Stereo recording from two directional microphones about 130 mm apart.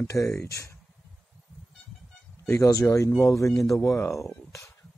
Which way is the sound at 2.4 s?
25° left (ahead or behind).